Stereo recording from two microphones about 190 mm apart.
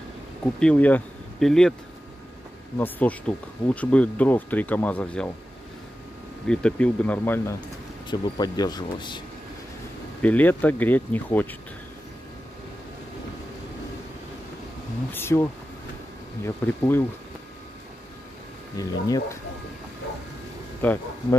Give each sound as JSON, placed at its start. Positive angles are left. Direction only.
{"t": 0.6, "sound": "speech", "side_deg": 5}
{"t": 2.8, "sound": "speech", "side_deg": 10}
{"t": 6.4, "sound": "speech", "side_deg": 5}
{"t": 10.2, "sound": "speech", "side_deg": 10}
{"t": 15.1, "sound": "speech", "side_deg": 15}
{"t": 18.8, "sound": "speech", "side_deg": 20}
{"t": 20.8, "sound": "speech", "side_deg": 10}